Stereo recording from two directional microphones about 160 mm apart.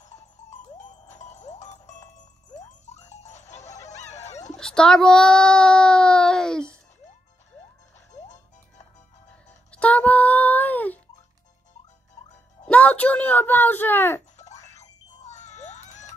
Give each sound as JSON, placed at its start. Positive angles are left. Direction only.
{"t": 0.7, "sound": "music", "side_deg": 45}
{"t": 3.8, "sound": "a sound", "side_deg": 45}
{"t": 4.6, "sound": "a child's voice", "side_deg": 5}
{"t": 9.7, "sound": "music", "side_deg": 10}
{"t": 12.6, "sound": "speech", "side_deg": 10}
{"t": 14.8, "sound": "music", "side_deg": 45}